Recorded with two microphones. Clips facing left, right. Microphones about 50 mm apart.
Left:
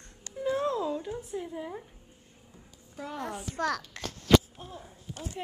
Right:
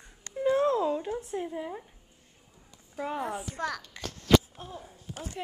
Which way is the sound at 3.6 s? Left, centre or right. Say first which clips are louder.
Left 4 dB; left.